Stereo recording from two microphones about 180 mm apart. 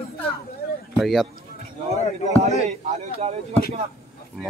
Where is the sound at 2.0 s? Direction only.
35° left (ahead or behind).